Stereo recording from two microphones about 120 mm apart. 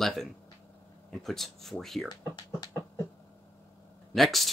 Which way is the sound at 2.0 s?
35° left (ahead or behind).